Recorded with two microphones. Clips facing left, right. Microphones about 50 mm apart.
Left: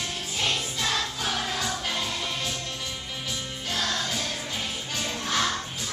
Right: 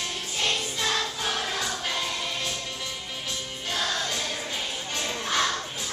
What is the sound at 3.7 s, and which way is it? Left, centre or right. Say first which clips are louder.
Music: even; centre.